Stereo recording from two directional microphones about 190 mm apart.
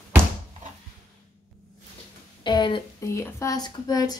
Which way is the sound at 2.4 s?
25° left (ahead or behind).